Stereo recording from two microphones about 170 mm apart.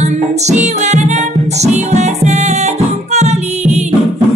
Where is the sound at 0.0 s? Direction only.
40° right (ahead or behind).